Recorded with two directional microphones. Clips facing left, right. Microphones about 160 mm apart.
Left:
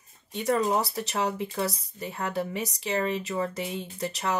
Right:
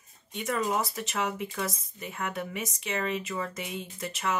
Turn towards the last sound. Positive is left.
turn(degrees=35)  # may be behind; listen again after turning